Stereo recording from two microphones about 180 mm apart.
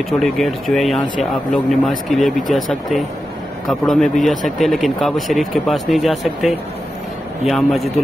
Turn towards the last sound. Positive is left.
turn(degrees=0)  # may be behind; listen again after turning